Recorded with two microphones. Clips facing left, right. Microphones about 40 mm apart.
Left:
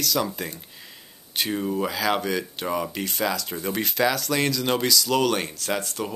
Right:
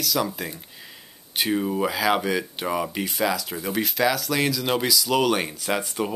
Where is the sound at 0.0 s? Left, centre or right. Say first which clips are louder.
Even; centre.